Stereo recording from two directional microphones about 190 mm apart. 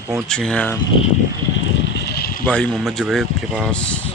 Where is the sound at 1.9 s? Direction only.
60° left (ahead or behind).